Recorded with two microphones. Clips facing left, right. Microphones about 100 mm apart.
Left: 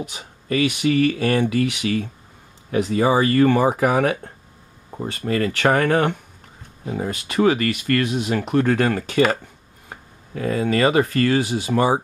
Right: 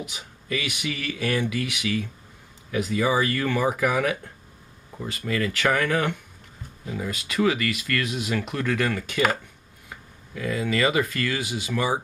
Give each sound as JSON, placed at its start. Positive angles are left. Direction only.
{"t": 0.0, "sound": "speech", "side_deg": 35}